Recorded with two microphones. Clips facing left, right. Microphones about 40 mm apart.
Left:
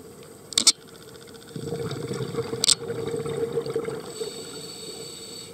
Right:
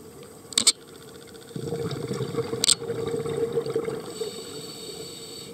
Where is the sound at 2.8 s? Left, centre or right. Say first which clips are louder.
Right 1 dB; centre; by 4.9 s right.